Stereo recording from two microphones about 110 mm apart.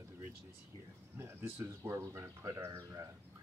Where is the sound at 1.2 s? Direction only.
20° right (ahead or behind).